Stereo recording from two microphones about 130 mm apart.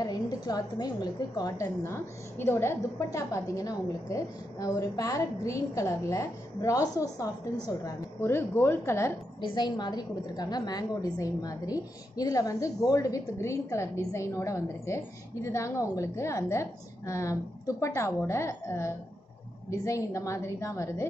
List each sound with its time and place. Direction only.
0.0 s a woman's voice: 30° left (ahead or behind)
9.4 s a woman's voice: 35° left (ahead or behind)